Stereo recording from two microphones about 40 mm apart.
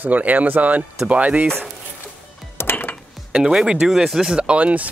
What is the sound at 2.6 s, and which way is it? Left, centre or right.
Music, left.